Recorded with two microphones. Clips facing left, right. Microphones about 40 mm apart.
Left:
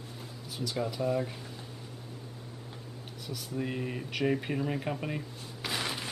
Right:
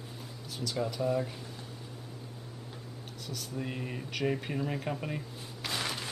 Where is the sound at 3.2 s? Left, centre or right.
Centre.